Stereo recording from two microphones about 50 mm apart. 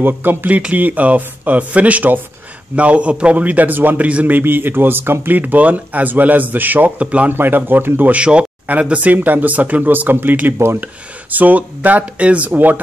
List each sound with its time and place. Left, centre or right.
0.0 s a man's voice: right
4.1 s a man's voice: right
4.4 s speech: right
5.4 s speech: right
7.3 s speech: right
8.2 s a man's voice: right